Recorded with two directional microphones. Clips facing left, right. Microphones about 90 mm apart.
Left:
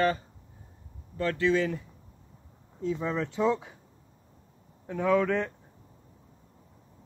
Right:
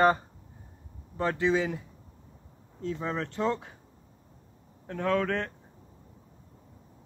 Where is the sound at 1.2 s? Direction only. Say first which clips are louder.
Left 1 dB; 20° right (ahead or behind).